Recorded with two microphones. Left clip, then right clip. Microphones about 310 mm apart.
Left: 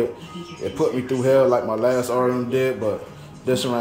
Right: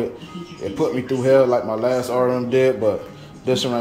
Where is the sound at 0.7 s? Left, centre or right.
Centre.